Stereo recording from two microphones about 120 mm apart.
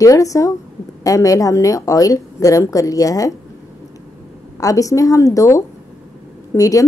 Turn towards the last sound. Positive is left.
turn(degrees=30)  # may be behind; listen again after turning